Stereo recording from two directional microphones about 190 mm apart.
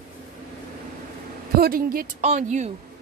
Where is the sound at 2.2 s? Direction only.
35° right (ahead or behind).